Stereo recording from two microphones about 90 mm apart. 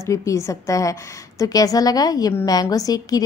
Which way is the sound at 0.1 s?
35° left (ahead or behind).